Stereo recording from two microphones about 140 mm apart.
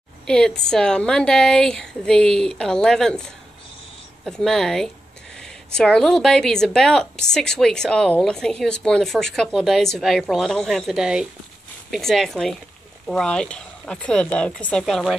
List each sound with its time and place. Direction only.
0.3 s speech: 5° left (ahead or behind)